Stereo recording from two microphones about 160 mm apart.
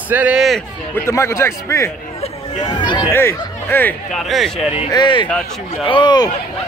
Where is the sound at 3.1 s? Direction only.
15° left (ahead or behind).